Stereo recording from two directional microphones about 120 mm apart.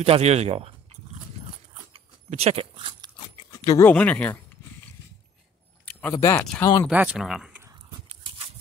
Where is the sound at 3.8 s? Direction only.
10° left (ahead or behind).